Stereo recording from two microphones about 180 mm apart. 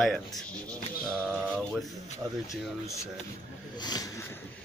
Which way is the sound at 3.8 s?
25° left (ahead or behind).